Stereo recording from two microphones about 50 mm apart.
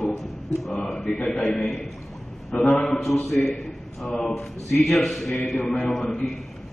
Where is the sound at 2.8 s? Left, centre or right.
Centre.